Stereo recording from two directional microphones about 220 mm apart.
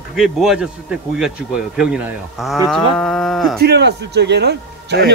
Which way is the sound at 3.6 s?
50° right (ahead or behind).